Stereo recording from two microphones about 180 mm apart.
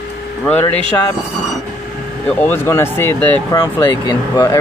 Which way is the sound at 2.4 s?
10° left (ahead or behind).